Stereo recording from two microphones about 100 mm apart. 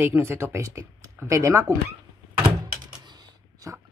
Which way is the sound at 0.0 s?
25° right (ahead or behind).